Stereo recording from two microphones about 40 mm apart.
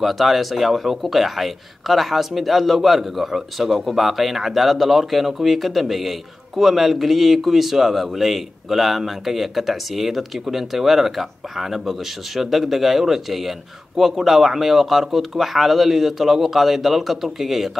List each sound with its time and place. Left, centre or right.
0.0 s speech: centre